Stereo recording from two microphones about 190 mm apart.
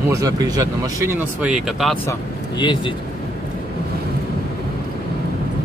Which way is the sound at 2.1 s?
25° left (ahead or behind).